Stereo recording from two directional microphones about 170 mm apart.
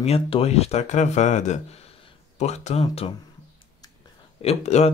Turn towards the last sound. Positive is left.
turn(degrees=40)  # may be behind; listen again after turning